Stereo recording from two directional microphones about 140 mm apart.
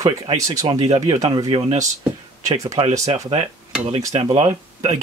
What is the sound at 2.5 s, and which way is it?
Speech, 25° right (ahead or behind).